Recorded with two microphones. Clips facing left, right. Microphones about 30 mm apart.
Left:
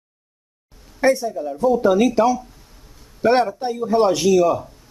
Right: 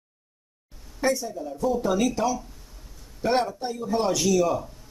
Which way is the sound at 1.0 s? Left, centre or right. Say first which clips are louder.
Left 7 dB; left.